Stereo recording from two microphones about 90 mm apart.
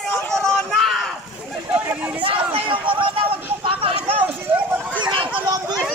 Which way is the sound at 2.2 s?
85° right.